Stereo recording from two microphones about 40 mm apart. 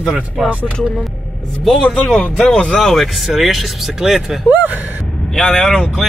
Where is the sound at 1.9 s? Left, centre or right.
Centre.